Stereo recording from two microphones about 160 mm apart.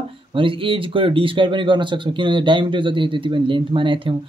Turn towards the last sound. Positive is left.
turn(degrees=-30)  # may be behind; listen again after turning